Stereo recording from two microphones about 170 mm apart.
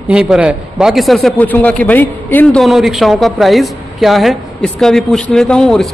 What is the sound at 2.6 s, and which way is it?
A woman's voice, centre (ahead or behind).